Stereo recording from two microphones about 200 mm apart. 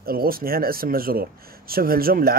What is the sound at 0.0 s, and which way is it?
Speech, 50° right (ahead or behind).